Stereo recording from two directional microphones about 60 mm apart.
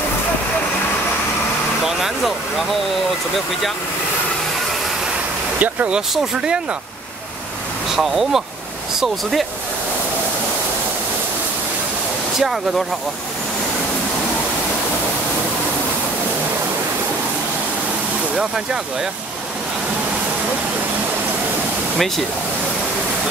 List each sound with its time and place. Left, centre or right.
1.9 s vehicle: centre
5.6 s speech: right
7.9 s speech: centre
12.4 s speech: centre
18.3 s speech: centre
21.9 s speech: centre